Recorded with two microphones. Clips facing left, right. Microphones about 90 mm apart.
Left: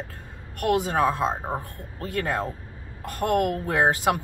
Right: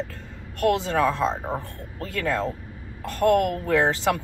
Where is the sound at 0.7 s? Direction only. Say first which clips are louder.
Left 3 dB; 50° left (ahead or behind).